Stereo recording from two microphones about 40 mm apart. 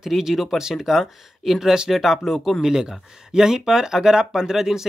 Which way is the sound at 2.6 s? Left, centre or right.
Centre.